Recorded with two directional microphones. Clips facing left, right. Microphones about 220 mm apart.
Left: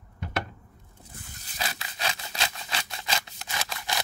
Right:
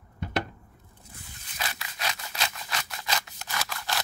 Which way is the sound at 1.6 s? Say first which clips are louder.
Left 2 dB; 30° left (ahead or behind).